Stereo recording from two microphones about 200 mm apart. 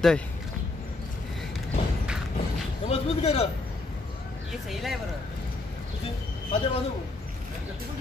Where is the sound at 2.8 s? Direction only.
30° left (ahead or behind).